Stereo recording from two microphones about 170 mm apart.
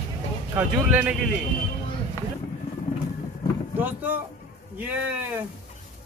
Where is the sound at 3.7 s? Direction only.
10° right (ahead or behind).